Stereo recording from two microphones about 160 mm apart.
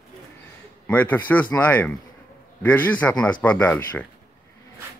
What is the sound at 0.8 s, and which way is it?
Speech, 10° left (ahead or behind).